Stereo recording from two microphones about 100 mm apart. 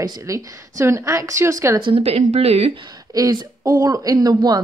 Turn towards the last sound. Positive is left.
turn(degrees=-40)  # may be behind; listen again after turning